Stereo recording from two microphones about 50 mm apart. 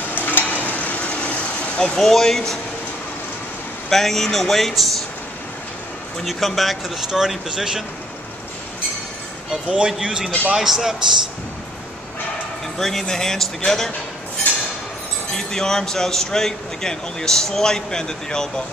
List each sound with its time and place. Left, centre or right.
0.1 s stir: left
1.8 s a man's voice: centre
3.9 s speech: centre
6.2 s speech: centre
7.1 s speech: centre
9.7 s speech: centre
12.7 s a man's voice: centre
15.3 s a man's voice: centre